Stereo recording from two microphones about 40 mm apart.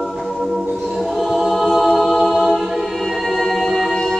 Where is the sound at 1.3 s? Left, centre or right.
Centre.